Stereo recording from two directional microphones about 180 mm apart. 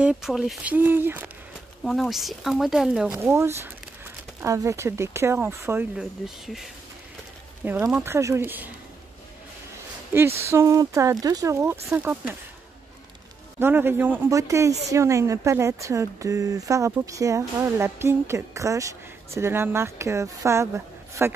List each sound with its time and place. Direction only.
0.0 s speech: 5° right (ahead or behind)
1.9 s speech: centre (ahead or behind)
10.1 s speech: 15° right (ahead or behind)
13.6 s speech: 10° right (ahead or behind)